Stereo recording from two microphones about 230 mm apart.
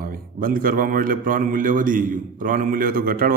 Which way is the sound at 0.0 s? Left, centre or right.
Right.